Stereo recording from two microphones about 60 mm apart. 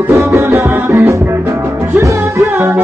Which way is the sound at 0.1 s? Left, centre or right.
Right.